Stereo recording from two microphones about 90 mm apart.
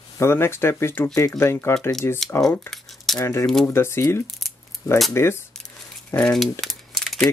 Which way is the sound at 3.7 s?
30° left (ahead or behind).